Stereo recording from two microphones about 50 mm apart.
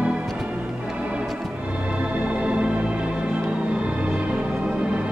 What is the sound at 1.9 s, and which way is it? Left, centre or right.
Music, right.